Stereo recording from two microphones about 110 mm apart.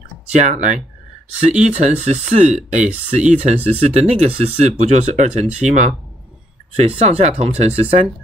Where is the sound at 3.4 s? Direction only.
70° right (ahead or behind); by 5.9 s 90° right.